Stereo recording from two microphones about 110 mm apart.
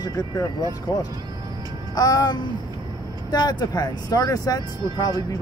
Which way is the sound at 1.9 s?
35° left (ahead or behind).